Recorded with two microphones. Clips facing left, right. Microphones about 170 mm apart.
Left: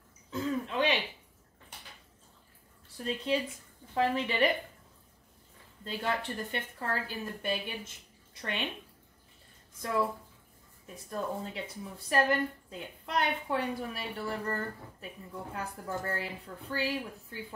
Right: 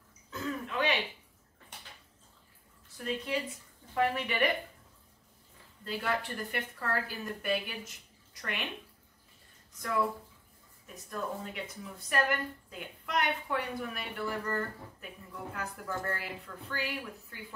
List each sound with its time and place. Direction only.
0.3 s a sound: 30° left (ahead or behind)
3.0 s speech: 30° left (ahead or behind)
5.9 s speech: 25° left (ahead or behind)
9.8 s speech: 25° left (ahead or behind)
11.1 s speech: 30° left (ahead or behind)